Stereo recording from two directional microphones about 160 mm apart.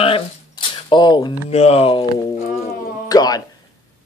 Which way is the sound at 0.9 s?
30° left (ahead or behind).